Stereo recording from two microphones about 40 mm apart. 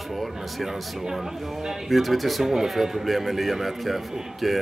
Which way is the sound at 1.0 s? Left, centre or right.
Centre.